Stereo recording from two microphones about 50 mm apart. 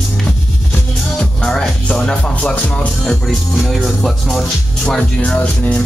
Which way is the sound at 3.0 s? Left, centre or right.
Centre.